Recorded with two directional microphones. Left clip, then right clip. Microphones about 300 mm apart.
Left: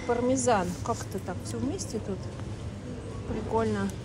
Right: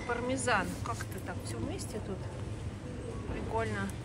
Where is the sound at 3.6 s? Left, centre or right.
Centre.